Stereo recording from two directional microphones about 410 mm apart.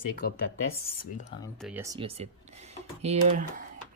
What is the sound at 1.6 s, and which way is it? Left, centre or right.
Speech, centre.